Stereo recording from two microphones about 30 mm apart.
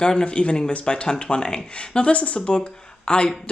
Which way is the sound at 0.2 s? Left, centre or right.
Left.